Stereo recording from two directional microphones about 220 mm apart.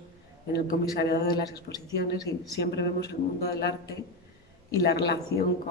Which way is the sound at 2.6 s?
50° left (ahead or behind).